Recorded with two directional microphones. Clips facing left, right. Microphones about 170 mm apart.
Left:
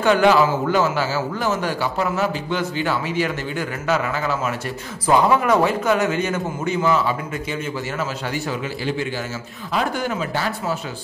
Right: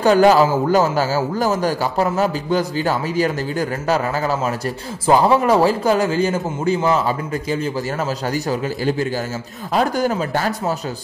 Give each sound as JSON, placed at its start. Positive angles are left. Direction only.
{"t": 0.0, "sound": "a man's voice", "side_deg": -40}
{"t": 9.8, "sound": "a man's voice", "side_deg": -40}